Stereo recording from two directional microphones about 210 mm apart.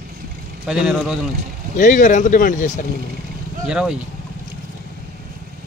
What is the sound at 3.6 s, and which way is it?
Speech, 5° right (ahead or behind).